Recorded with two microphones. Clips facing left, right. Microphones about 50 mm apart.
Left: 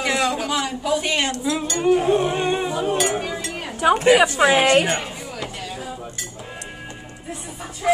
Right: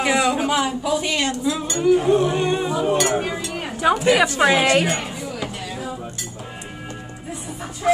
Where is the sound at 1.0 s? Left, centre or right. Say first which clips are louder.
Even; left.